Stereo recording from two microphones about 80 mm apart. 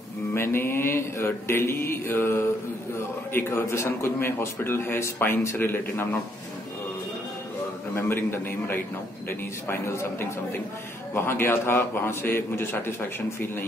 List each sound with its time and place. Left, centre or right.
0.3 s mantra: left
3.3 s a man's voice: left
7.9 s a man's voice: left